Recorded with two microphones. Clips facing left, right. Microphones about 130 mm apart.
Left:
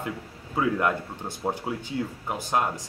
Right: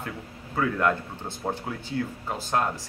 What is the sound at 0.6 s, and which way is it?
Speech, 15° left (ahead or behind).